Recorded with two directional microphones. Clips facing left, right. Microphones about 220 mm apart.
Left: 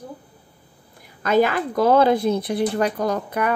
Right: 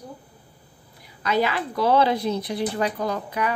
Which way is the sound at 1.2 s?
50° left (ahead or behind).